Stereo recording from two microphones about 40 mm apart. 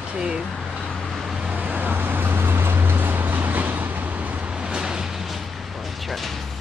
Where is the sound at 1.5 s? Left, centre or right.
Right.